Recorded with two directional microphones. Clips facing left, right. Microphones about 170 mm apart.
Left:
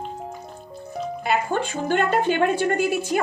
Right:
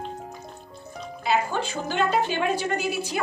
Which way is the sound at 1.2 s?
55° left (ahead or behind).